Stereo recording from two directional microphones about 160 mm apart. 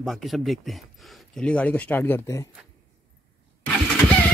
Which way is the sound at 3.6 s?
10° left (ahead or behind).